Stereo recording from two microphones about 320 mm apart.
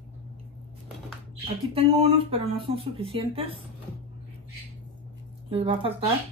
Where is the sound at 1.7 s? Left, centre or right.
Centre.